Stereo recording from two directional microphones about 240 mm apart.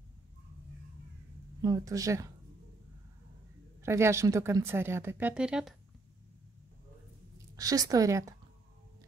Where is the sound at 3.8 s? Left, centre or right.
Centre.